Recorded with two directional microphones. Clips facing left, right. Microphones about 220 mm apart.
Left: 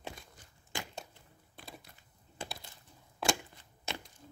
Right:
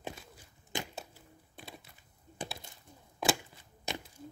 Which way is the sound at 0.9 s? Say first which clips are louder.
Right 1 dB; 5° right (ahead or behind).